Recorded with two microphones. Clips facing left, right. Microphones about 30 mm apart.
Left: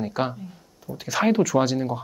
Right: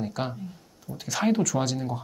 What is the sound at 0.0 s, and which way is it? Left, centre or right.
Speech, centre.